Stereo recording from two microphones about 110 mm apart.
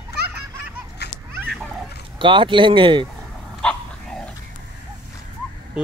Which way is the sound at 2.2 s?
50° right (ahead or behind).